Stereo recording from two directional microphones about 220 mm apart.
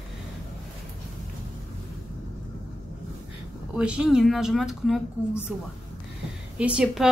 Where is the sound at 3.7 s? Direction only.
5° right (ahead or behind).